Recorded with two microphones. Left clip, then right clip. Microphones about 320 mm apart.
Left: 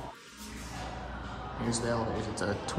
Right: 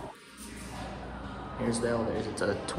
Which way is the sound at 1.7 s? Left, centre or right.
Centre.